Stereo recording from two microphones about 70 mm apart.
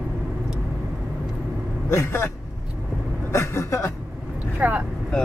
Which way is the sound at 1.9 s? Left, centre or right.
Left.